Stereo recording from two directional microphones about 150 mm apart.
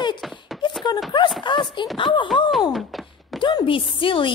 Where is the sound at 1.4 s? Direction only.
30° left (ahead or behind).